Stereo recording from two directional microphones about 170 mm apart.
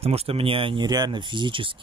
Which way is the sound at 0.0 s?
35° right (ahead or behind).